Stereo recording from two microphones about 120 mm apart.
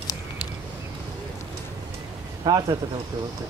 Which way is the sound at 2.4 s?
35° right (ahead or behind).